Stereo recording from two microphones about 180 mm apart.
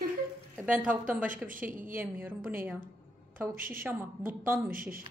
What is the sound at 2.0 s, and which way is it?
Speech, 10° right (ahead or behind).